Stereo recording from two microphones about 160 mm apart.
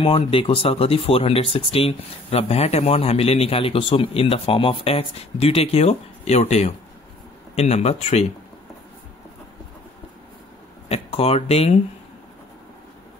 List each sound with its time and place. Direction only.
0.0 s speech: 35° left (ahead or behind)
10.9 s speech: 40° left (ahead or behind)